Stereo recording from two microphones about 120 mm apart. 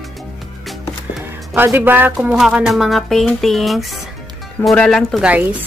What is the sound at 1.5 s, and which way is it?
Speech, 15° right (ahead or behind).